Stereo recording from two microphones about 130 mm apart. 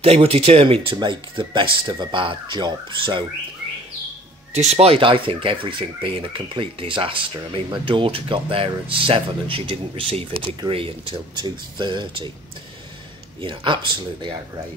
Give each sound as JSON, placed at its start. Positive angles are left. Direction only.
{"t": 0.0, "sound": "speech", "side_deg": -50}
{"t": 4.6, "sound": "speech", "side_deg": -55}
{"t": 13.4, "sound": "speech", "side_deg": -40}